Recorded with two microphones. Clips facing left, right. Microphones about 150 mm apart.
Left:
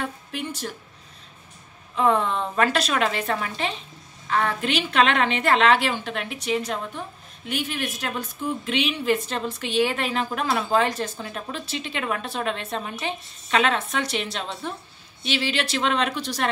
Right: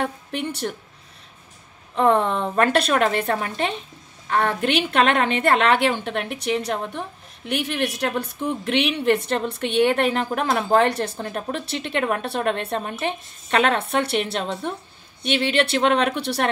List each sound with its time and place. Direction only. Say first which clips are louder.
0.0 s a woman's voice: right 4 dB; 65° right (ahead or behind)
2.0 s a woman's voice: right 3 dB; 60° right (ahead or behind)